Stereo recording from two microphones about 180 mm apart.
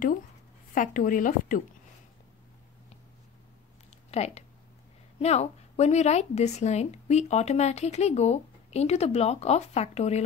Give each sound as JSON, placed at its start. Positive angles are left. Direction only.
{"t": 0.7, "sound": "speech", "side_deg": 50}
{"t": 4.1, "sound": "speech", "side_deg": 35}